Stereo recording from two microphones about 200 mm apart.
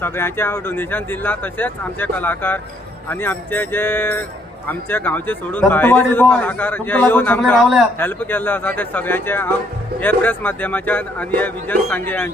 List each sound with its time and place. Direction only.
0.0 s a man's voice: 10° left (ahead or behind)